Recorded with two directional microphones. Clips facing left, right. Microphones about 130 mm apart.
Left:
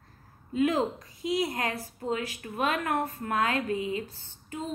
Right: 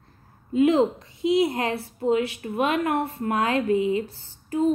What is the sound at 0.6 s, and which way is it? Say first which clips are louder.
A woman's voice: right 7 dB; 25° right (ahead or behind).